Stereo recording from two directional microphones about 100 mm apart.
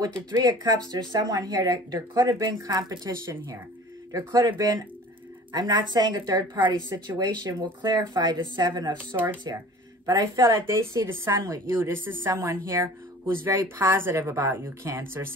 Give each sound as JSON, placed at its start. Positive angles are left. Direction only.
{"t": 0.0, "sound": "speech", "side_deg": -45}
{"t": 4.1, "sound": "a woman's voice", "side_deg": -35}
{"t": 9.1, "sound": "speech", "side_deg": -20}
{"t": 10.0, "sound": "speech", "side_deg": -35}